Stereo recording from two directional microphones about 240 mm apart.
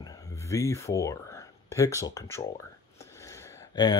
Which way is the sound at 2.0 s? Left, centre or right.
Centre.